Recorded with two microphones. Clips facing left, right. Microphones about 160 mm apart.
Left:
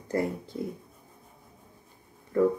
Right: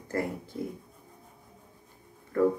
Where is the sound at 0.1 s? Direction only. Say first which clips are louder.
Left 3 dB; 15° left (ahead or behind).